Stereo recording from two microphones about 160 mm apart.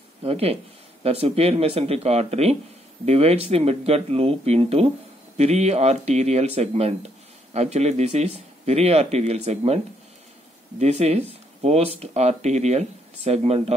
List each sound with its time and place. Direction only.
0.2 s speech: 40° right (ahead or behind)
10.8 s speech: 40° right (ahead or behind)